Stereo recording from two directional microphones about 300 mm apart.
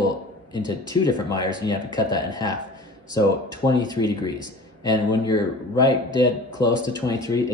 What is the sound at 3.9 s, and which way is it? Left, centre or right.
Speech, centre.